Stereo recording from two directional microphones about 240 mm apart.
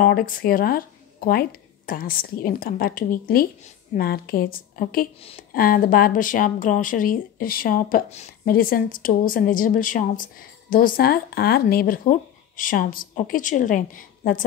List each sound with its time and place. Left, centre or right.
0.0 s a woman's voice: left